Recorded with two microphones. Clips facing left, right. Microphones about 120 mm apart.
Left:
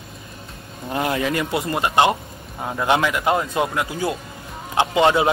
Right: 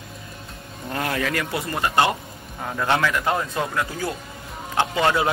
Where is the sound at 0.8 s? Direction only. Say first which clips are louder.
Left 3 dB; 20° left (ahead or behind).